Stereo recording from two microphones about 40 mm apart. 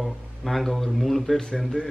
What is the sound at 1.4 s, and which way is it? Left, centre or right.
Speech, centre.